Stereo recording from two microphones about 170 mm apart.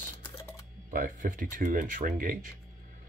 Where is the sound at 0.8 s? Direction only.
50° right (ahead or behind).